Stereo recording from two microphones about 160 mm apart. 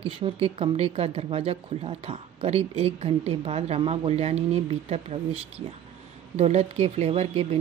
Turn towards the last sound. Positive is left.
turn(degrees=-40)  # may be behind; listen again after turning